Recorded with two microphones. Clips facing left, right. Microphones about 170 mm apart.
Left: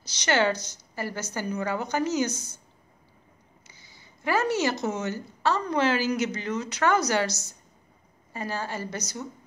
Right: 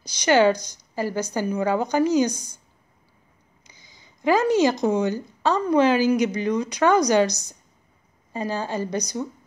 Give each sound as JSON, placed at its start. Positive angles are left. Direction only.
{"t": 0.0, "sound": "a woman's voice", "side_deg": -10}
{"t": 3.6, "sound": "a woman's voice", "side_deg": -15}